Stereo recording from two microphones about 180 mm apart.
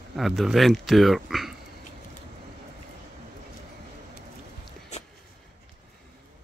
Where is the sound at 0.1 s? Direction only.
Centre (ahead or behind).